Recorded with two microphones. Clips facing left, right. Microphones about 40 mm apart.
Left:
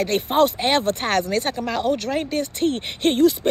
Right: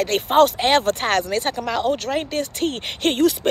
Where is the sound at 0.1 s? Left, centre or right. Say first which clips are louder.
Right 4 dB; right.